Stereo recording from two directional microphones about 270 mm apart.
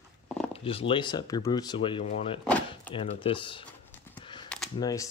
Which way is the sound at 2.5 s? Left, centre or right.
Centre.